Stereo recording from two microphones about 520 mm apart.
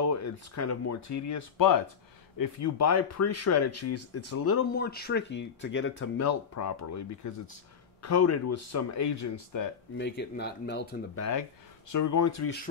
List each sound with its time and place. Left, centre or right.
0.0 s speech: left
9.9 s speech: centre
11.9 s speech: left